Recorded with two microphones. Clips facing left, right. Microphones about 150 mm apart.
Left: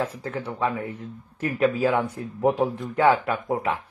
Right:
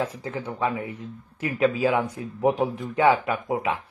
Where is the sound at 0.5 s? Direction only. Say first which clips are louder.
Even; 20° right (ahead or behind).